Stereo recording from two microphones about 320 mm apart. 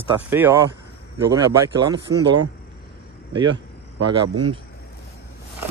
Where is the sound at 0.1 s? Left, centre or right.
Centre.